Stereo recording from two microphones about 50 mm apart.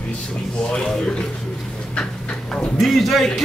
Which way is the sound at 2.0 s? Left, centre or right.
Centre.